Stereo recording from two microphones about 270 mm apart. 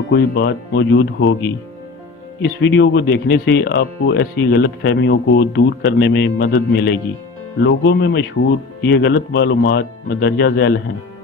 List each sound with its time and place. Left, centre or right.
0.1 s speech: left
2.4 s speech: left